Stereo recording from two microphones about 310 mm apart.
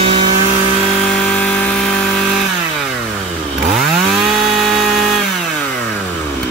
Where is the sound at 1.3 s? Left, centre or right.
Centre.